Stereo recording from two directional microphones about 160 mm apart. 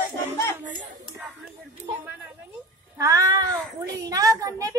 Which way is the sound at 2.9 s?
20° right (ahead or behind).